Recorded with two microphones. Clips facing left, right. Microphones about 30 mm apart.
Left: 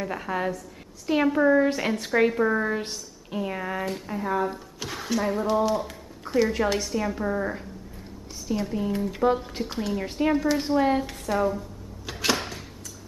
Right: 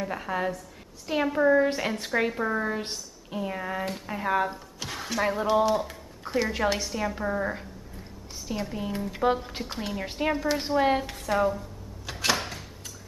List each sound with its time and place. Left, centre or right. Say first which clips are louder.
0.0 s a woman's voice: left 1 dB; centre
4.1 s speech: right 1 dB; right
4.7 s music: left 4 dB; centre
5.4 s speech: right 2 dB; centre
5.7 s a woman's voice: even; centre
12.1 s a sound: left 1 dB; centre